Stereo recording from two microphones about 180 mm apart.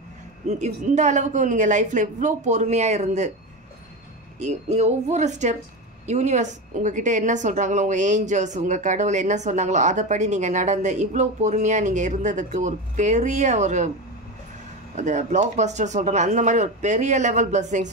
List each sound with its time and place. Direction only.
0.6 s a woman's voice: 40° right (ahead or behind)
4.4 s a woman's voice: 40° right (ahead or behind)
15.0 s a woman's voice: 40° right (ahead or behind)